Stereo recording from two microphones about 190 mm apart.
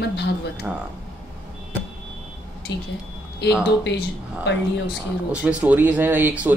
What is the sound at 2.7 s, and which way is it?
Speech, 65° left (ahead or behind).